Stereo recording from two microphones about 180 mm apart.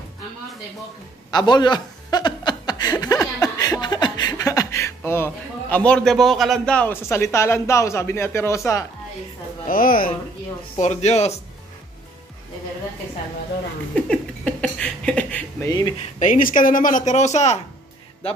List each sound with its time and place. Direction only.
1.3 s a man's voice: 25° left (ahead or behind)
9.7 s speech: 50° left (ahead or behind)
10.8 s speech: 40° left (ahead or behind)
13.9 s a sound: 5° left (ahead or behind)
16.2 s speech: 45° left (ahead or behind)